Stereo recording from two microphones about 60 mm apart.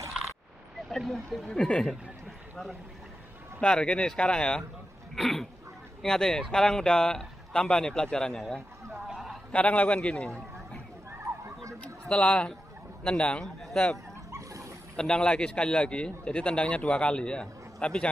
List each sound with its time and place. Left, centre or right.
0.8 s speech: centre
3.6 s a man's voice: centre
5.1 s a man's voice: centre
9.0 s a sound: centre
9.5 s a man's voice: left
11.8 s a man's voice: centre
14.3 s dog: right
15.0 s a man's voice: centre